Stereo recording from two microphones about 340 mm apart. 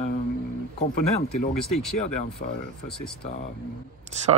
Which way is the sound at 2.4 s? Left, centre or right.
Left.